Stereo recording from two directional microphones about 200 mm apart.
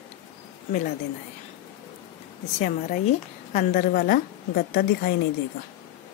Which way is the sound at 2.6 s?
40° left (ahead or behind).